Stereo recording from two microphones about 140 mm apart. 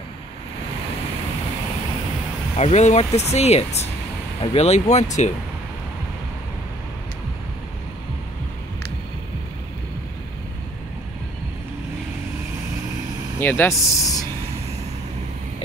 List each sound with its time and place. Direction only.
2.5 s speech: 50° left (ahead or behind)
13.4 s speech: 15° left (ahead or behind)